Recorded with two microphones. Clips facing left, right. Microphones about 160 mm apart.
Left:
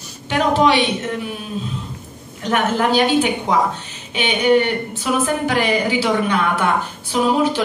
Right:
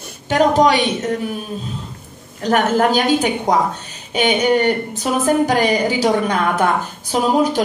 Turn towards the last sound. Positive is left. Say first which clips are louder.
# right 1 dB
turn(degrees=-40)  # may be behind; listen again after turning